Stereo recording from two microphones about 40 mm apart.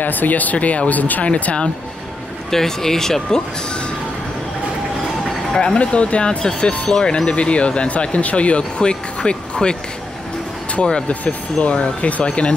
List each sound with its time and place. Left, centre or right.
0.0 s speech: left
1.2 s speech: left
2.5 s speech: centre
5.5 s speech: centre
5.8 s speech: left
6.9 s speech: centre